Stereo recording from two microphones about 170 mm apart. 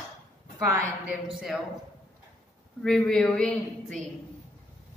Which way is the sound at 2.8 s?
5° left (ahead or behind).